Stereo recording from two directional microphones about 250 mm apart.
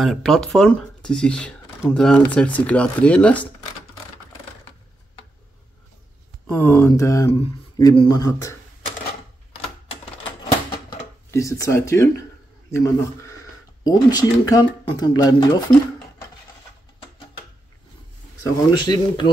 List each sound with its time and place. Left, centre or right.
0.0 s speech: centre
6.4 s speech: centre
11.3 s speech: centre
18.7 s speech: centre